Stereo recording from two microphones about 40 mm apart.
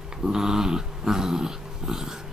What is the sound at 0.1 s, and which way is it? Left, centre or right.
Dog, centre.